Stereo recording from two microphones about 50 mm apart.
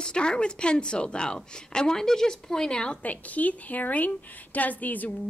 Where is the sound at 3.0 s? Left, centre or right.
Left.